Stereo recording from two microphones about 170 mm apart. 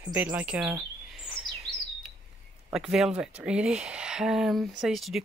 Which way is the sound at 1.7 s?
Centre (ahead or behind).